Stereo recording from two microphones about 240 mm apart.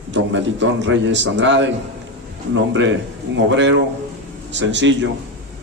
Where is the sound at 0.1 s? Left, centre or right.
Right.